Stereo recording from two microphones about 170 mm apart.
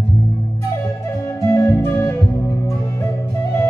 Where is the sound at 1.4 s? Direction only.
15° left (ahead or behind).